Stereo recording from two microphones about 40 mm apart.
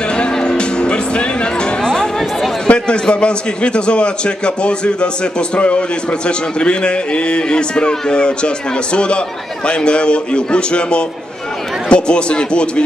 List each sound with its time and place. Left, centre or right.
0.1 s music: left
2.7 s a man's voice: left